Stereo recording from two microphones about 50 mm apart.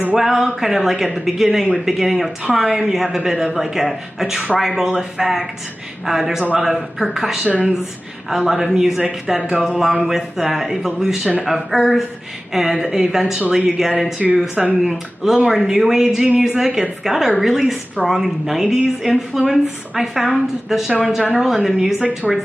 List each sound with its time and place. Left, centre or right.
0.2 s speech: centre
14.5 s speech: centre
14.8 s speech: centre